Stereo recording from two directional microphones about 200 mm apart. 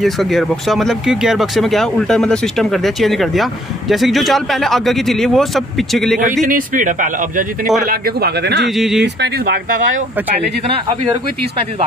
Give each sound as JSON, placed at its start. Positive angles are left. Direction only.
{"t": 0.0, "sound": "speech", "side_deg": 0}
{"t": 6.4, "sound": "a man's voice", "side_deg": -40}
{"t": 8.6, "sound": "speech", "side_deg": 0}
{"t": 9.0, "sound": "speech", "side_deg": -55}